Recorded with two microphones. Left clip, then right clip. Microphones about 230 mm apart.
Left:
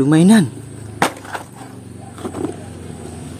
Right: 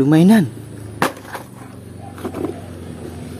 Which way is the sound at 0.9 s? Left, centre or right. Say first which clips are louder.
Left 2 dB; centre.